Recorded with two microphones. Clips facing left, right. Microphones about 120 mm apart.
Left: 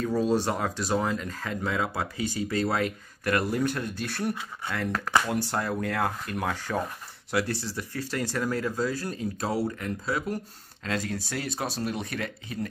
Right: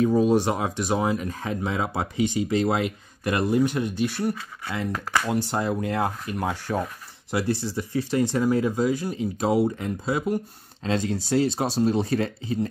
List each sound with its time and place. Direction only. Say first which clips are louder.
0.0 s speech: right 5 dB; 15° right (ahead or behind)
4.2 s speech: right 3 dB; centre (ahead or behind)
4.6 s speech: right 1 dB; 15° right (ahead or behind); by 12.5 s 30° right (ahead or behind)